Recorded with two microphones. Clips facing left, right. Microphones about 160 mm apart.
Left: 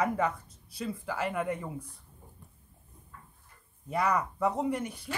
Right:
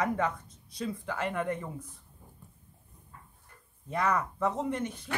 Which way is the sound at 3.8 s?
10° left (ahead or behind).